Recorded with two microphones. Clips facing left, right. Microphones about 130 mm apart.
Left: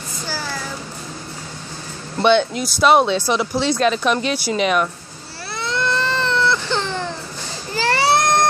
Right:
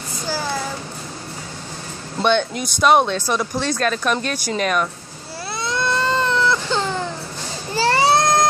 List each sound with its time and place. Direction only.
2.2 s speech: 10° left (ahead or behind)
5.5 s baby cry: 15° right (ahead or behind)
7.7 s baby cry: 25° right (ahead or behind)